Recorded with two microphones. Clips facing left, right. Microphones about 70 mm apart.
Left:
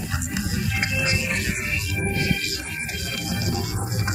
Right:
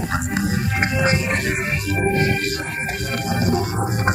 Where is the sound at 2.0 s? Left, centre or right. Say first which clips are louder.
Right 6 dB; right.